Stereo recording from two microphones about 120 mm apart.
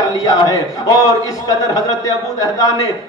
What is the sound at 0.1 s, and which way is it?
A man's voice, 30° left (ahead or behind).